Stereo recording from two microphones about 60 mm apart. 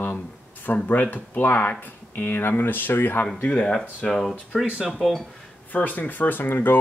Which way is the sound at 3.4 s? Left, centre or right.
Centre.